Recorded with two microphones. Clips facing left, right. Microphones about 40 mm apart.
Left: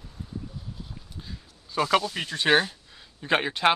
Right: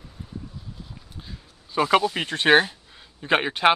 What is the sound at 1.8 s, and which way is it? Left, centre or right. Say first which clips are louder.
Speech: right 4 dB; centre.